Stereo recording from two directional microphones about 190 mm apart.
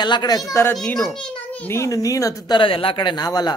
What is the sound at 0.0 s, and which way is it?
Speech, 25° left (ahead or behind).